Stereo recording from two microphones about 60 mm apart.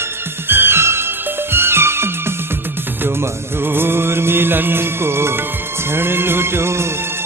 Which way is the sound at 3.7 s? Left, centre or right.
Right.